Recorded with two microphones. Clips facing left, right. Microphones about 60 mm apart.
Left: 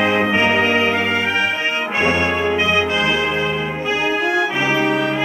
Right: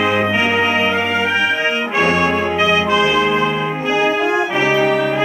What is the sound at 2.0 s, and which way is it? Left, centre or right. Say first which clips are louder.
Brass instrument: right 2 dB; left.